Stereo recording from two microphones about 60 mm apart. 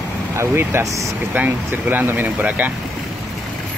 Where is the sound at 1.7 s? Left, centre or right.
Right.